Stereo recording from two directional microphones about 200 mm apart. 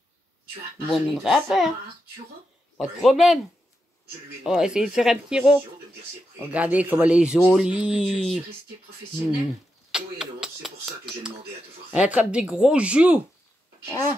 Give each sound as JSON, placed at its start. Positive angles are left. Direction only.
{"t": 0.8, "sound": "speech", "side_deg": 0}
{"t": 2.8, "sound": "speech", "side_deg": 0}
{"t": 4.4, "sound": "speech", "side_deg": -5}
{"t": 9.8, "sound": "speech", "side_deg": -5}
{"t": 11.9, "sound": "speech", "side_deg": -5}